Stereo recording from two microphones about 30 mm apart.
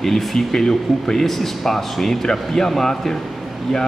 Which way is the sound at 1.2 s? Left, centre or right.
Centre.